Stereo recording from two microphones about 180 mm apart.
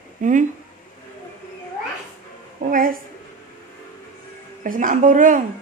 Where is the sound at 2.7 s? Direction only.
50° right (ahead or behind).